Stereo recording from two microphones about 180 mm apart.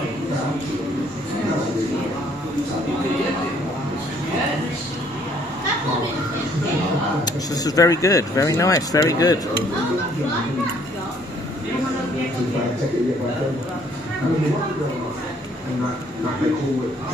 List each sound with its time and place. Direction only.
7.2 s speech: 20° left (ahead or behind)